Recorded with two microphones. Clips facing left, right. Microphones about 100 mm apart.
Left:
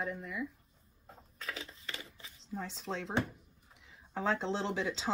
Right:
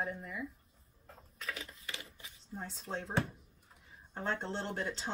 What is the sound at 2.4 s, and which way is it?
Speech, 85° left.